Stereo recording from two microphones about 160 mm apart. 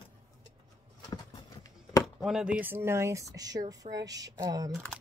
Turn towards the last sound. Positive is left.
turn(degrees=-25)  # may be behind; listen again after turning